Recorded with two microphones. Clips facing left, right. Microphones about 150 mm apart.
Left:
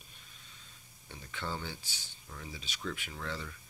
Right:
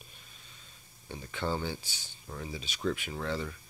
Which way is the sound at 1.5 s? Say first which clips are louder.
Right 6 dB; 40° right (ahead or behind).